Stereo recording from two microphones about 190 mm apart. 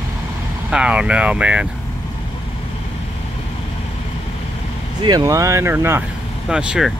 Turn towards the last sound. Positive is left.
turn(degrees=-5)  # may be behind; listen again after turning